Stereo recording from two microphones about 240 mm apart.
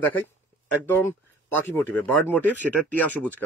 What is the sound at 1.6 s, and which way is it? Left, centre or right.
Speech, centre.